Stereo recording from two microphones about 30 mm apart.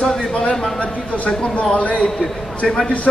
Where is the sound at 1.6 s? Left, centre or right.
Left.